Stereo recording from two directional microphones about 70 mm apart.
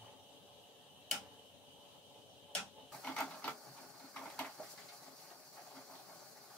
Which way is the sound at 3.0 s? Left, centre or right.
Centre.